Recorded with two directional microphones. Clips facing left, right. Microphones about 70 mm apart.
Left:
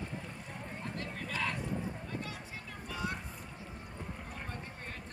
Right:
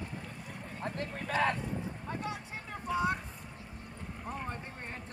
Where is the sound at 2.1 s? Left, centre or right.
Right.